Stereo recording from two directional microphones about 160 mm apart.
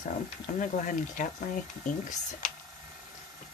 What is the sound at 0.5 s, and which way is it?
Speech, 55° left (ahead or behind).